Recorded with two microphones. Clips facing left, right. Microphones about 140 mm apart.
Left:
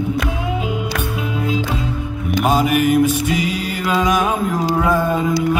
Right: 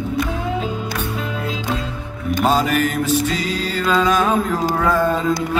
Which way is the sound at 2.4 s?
10° left (ahead or behind).